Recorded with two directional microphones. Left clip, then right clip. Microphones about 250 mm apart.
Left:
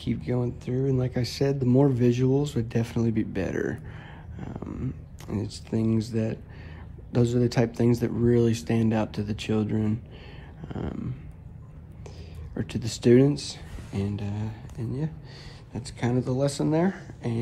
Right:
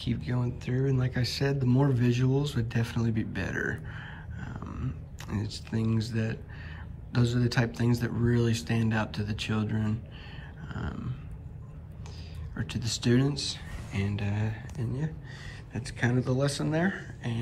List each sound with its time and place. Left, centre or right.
0.0 s speech: centre
12.5 s speech: left
15.7 s speech: centre